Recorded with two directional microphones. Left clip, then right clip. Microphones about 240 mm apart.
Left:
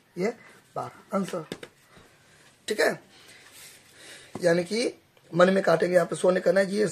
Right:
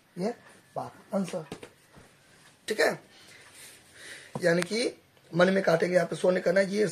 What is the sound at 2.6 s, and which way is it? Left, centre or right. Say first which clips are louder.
Speech: left 1 dB; centre.